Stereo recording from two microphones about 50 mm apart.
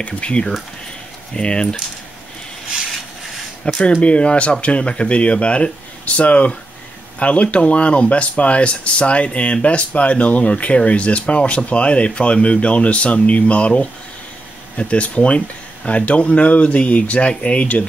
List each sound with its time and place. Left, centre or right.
0.0 s speech: left
3.6 s speech: centre